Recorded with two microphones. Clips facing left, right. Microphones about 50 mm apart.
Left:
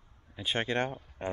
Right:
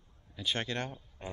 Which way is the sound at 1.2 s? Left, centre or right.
Left.